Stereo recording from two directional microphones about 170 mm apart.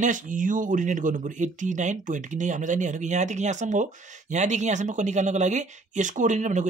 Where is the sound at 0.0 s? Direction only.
50° right (ahead or behind).